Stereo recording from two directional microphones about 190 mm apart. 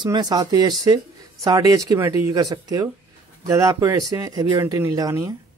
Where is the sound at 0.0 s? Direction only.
20° right (ahead or behind).